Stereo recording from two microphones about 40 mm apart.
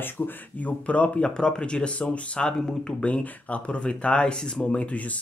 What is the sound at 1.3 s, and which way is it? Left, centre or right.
Speech, left.